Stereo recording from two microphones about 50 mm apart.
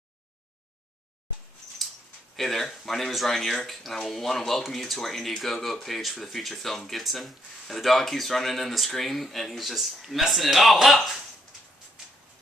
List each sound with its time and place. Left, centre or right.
2.3 s speech: centre